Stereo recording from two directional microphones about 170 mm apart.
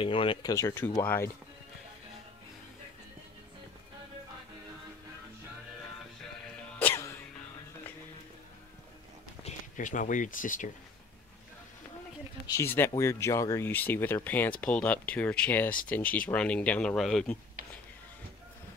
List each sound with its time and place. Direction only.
0.0 s speech: 30° left (ahead or behind); by 1.3 s 15° left (ahead or behind)
6.8 s music: 10° left (ahead or behind)
9.4 s speech: 45° left (ahead or behind)
12.4 s speech: 15° left (ahead or behind)